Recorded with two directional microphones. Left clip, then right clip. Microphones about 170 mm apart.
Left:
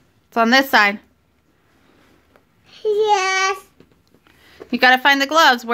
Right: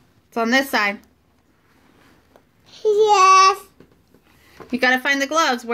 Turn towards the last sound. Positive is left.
turn(degrees=45)  # may be behind; listen again after turning